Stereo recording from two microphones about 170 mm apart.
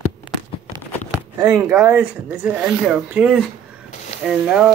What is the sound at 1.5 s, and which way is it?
Speech, 5° right (ahead or behind).